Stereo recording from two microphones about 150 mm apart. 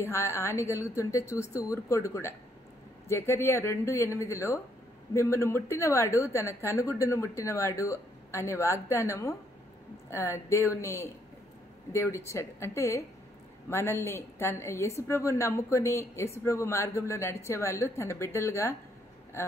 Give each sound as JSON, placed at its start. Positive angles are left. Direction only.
{"t": 0.0, "sound": "a woman's voice", "side_deg": 20}